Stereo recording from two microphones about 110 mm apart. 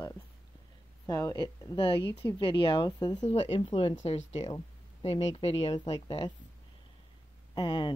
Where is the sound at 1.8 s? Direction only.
55° left (ahead or behind); by 3.3 s 40° left (ahead or behind).